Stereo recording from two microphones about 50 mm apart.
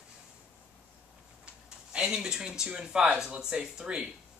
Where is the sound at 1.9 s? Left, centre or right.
Centre.